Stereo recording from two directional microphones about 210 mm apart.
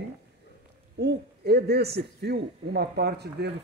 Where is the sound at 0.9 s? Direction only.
50° right (ahead or behind).